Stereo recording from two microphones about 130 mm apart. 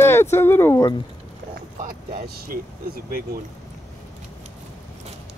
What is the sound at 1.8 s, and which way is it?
Speech, 90° right.